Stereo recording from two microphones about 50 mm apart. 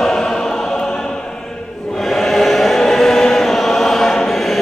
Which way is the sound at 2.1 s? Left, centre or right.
Centre.